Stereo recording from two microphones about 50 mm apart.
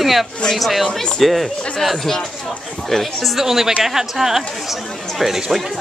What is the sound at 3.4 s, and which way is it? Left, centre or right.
Speech, centre.